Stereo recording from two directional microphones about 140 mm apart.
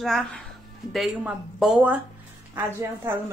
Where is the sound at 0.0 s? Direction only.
Centre (ahead or behind).